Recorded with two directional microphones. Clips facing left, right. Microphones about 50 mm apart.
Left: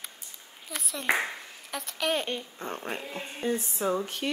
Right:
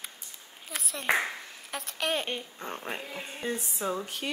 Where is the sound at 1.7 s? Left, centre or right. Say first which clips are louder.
Left 2 dB; centre.